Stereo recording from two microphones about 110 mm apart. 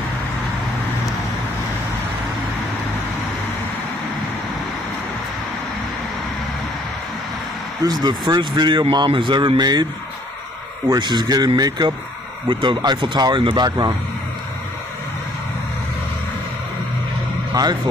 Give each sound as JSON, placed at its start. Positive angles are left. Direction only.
{"t": 7.8, "sound": "speech", "side_deg": -40}
{"t": 10.9, "sound": "speech", "side_deg": -40}
{"t": 17.5, "sound": "speech", "side_deg": -40}